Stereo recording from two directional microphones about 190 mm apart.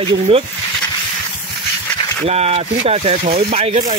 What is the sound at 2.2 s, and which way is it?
Speech, 35° right (ahead or behind).